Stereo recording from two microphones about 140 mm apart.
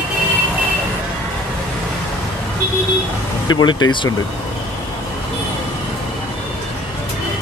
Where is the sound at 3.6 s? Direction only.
35° left (ahead or behind).